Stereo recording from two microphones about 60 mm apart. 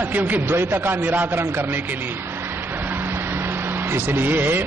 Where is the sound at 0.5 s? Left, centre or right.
Right.